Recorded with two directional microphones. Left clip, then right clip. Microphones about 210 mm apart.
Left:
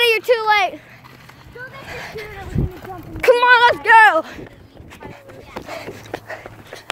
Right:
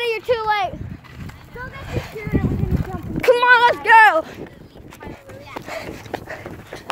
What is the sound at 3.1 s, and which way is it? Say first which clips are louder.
A child's voice: left 1 dB; 25° left (ahead or behind).